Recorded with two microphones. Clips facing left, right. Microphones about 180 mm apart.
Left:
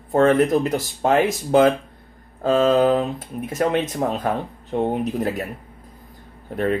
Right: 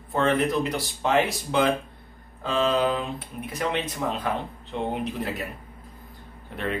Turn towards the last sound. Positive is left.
turn(degrees=45)  # may be behind; listen again after turning